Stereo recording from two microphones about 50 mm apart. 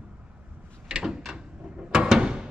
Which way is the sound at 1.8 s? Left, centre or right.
Centre.